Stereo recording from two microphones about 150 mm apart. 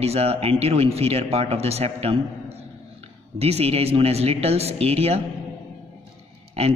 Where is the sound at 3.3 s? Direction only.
45° right (ahead or behind).